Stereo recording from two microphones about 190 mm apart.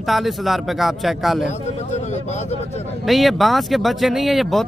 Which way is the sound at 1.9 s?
40° left (ahead or behind).